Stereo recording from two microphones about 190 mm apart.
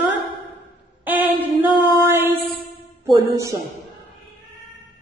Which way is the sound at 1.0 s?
10° right (ahead or behind).